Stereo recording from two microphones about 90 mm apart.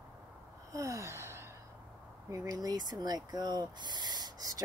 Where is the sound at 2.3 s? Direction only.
45° right (ahead or behind).